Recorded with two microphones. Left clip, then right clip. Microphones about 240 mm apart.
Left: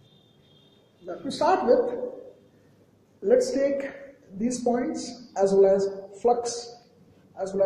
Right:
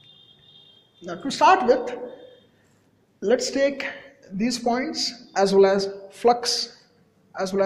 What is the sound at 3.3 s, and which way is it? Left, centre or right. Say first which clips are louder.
A man's voice: even; right.